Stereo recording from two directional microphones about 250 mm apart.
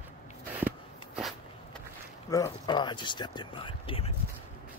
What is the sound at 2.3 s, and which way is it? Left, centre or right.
Speech, centre.